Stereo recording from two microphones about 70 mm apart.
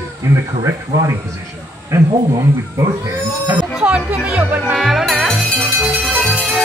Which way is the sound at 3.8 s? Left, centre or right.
Centre.